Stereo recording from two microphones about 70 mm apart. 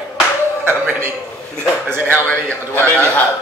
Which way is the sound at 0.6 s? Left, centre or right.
Right.